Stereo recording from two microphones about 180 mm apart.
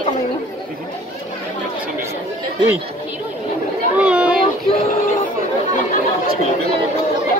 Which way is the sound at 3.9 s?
5° right (ahead or behind).